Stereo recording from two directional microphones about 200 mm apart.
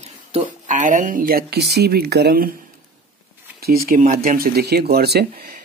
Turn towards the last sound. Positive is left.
turn(degrees=-50)  # may be behind; listen again after turning